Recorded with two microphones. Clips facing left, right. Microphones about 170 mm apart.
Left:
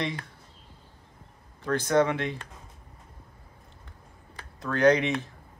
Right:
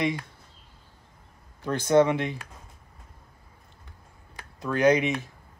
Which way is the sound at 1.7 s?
20° right (ahead or behind).